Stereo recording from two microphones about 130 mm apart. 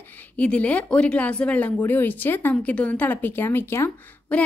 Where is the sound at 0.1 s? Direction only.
10° left (ahead or behind).